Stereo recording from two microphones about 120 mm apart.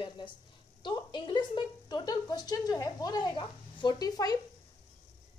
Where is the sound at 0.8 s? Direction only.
40° left (ahead or behind).